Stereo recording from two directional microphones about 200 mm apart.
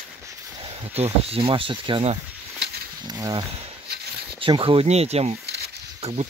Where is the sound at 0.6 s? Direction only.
25° right (ahead or behind).